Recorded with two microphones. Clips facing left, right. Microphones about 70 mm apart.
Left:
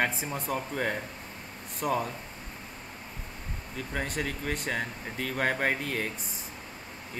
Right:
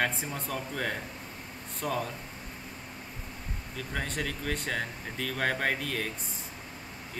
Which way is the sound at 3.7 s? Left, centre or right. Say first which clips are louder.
Left 2 dB; centre.